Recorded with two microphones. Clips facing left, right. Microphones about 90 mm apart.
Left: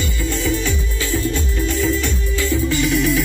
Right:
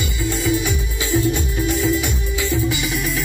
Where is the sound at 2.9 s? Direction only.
Centre (ahead or behind).